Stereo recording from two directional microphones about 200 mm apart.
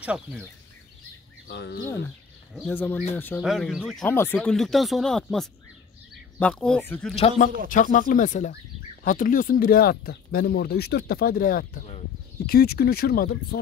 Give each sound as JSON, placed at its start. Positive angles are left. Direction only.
{"t": 0.0, "sound": "speech", "side_deg": -5}
{"t": 1.5, "sound": "speech", "side_deg": 55}
{"t": 1.9, "sound": "speech", "side_deg": 5}
{"t": 4.0, "sound": "speech", "side_deg": 10}
{"t": 7.2, "sound": "speech", "side_deg": 35}